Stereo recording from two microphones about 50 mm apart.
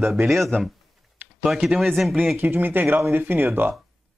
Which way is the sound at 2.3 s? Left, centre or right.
Right.